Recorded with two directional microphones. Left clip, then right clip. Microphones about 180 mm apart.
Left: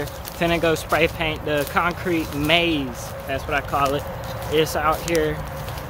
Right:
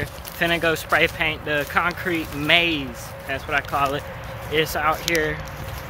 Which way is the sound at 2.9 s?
5° right (ahead or behind).